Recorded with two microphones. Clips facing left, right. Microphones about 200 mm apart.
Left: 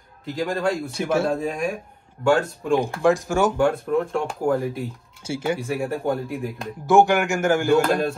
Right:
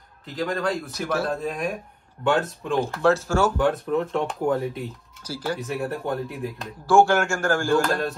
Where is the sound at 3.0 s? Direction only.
15° left (ahead or behind).